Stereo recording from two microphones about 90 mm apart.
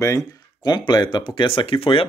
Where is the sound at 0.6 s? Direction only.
50° left (ahead or behind); by 2.0 s 85° left.